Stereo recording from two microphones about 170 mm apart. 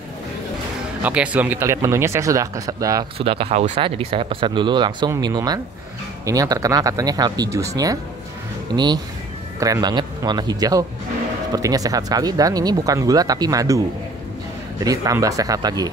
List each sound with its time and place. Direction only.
1.0 s speech: 10° right (ahead or behind)
3.2 s speech: 35° right (ahead or behind)
14.9 s speech: 20° right (ahead or behind)